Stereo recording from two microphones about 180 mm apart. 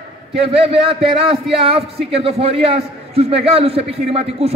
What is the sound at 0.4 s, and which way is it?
A man's voice, 35° right (ahead or behind).